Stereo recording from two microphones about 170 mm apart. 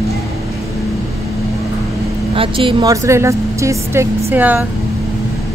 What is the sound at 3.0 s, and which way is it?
Speech, 15° right (ahead or behind).